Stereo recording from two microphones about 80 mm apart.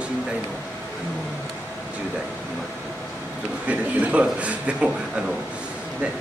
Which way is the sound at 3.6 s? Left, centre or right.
Centre.